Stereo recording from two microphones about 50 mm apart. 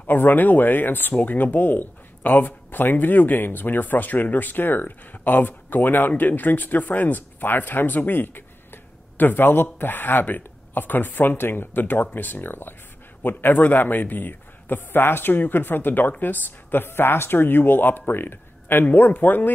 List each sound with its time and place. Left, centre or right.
0.0 s a man's voice: left